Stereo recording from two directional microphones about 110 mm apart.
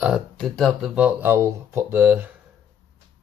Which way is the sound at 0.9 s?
15° right (ahead or behind).